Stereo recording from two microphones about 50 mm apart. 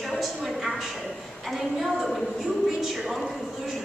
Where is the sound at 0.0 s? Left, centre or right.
Centre.